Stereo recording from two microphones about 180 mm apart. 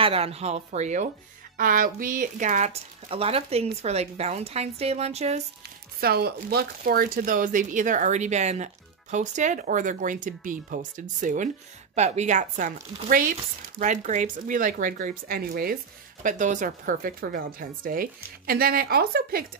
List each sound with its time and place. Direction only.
0.0 s a woman's voice: 35° right (ahead or behind)
1.6 s a woman's voice: 50° right (ahead or behind)
5.9 s speech: 60° right (ahead or behind)